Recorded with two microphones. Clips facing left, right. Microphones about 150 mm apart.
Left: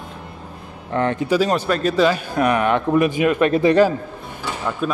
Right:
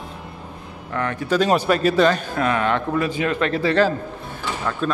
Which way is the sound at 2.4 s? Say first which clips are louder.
Left 3 dB; 15° left (ahead or behind).